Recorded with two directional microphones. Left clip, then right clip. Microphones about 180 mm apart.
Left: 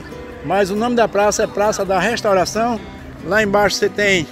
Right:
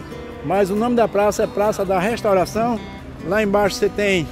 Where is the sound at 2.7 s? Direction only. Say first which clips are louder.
Left 1 dB; centre (ahead or behind).